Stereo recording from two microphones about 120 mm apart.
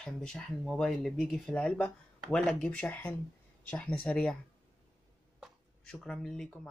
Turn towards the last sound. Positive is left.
turn(degrees=5)  # may be behind; listen again after turning